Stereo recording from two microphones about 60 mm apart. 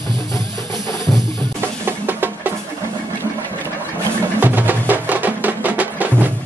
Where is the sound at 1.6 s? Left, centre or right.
Right.